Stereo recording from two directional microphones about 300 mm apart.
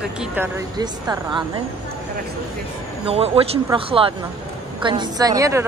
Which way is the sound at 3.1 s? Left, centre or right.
Centre.